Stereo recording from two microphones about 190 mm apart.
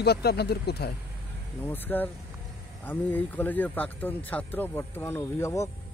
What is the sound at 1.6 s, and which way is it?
Speech, 10° left (ahead or behind).